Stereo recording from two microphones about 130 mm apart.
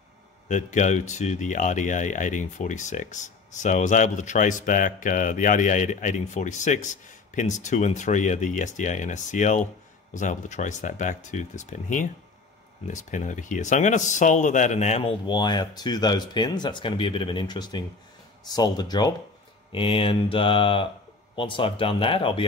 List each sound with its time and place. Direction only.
0.5 s speech: 70° left (ahead or behind); by 15.1 s 55° left (ahead or behind)
15.2 s speech: 35° left (ahead or behind)
19.7 s speech: 45° left (ahead or behind)